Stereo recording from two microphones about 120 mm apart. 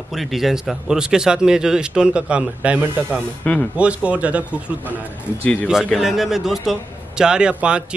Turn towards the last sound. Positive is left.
turn(degrees=-10)  # may be behind; listen again after turning